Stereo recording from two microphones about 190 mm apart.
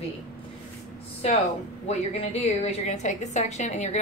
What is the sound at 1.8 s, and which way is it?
A woman's voice, 35° left (ahead or behind).